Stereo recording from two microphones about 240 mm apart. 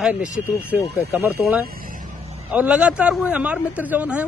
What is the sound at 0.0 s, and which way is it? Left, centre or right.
Speech, centre.